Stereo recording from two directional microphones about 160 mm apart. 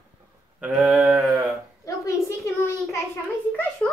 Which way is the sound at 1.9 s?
20° left (ahead or behind).